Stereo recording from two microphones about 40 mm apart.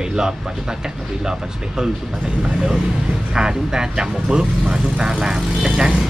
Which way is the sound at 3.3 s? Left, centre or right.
Centre.